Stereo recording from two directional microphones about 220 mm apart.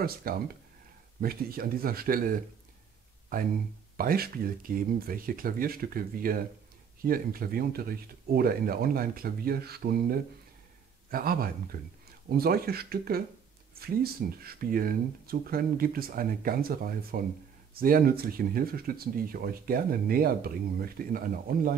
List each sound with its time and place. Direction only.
0.0 s speech: 40° right (ahead or behind)